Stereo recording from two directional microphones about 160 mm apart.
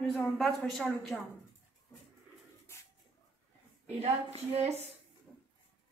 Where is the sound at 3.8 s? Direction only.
40° right (ahead or behind).